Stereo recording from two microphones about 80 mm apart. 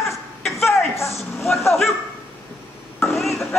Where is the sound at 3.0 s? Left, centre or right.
Centre.